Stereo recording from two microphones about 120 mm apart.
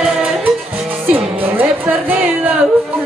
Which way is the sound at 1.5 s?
15° right (ahead or behind).